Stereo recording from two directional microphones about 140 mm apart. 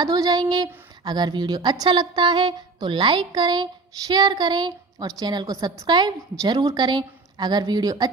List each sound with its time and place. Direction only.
0.0 s a woman's voice: 30° right (ahead or behind)